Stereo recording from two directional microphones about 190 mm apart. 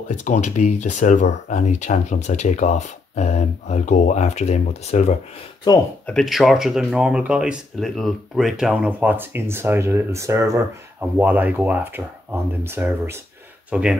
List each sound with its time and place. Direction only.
0.1 s speech: 40° left (ahead or behind)
6.0 s speech: centre (ahead or behind)